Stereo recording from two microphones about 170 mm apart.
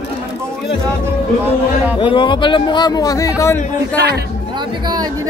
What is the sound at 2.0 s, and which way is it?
A man's voice, 30° left (ahead or behind).